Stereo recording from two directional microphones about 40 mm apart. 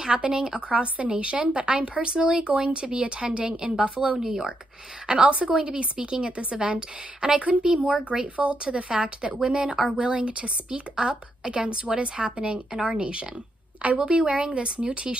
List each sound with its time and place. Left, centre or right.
0.2 s a woman's voice: right